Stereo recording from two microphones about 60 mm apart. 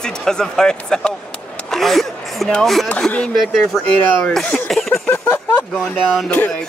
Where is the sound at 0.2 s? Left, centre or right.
Centre.